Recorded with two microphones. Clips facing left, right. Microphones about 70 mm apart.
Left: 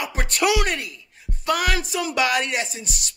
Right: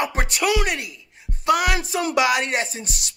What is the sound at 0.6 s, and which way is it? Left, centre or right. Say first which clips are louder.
Speech: even; centre.